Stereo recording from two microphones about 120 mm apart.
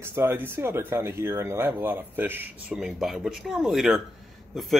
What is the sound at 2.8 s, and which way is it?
Speech, 5° right (ahead or behind).